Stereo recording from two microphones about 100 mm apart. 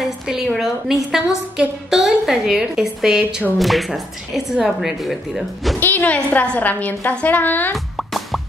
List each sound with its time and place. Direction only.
0.0 s a woman's voice: centre (ahead or behind)
5.8 s a woman's voice: 20° left (ahead or behind)
7.7 s plop: centre (ahead or behind)